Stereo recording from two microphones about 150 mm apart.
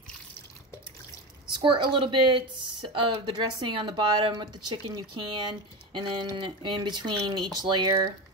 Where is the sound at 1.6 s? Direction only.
35° right (ahead or behind).